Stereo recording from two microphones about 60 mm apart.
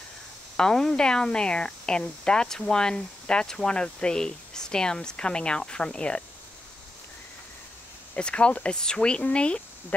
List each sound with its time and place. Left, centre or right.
0.6 s speech: centre
8.2 s speech: centre